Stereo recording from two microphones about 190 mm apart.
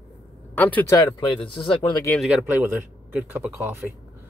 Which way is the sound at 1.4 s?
25° left (ahead or behind).